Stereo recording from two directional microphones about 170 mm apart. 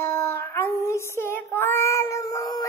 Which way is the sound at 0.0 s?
15° left (ahead or behind).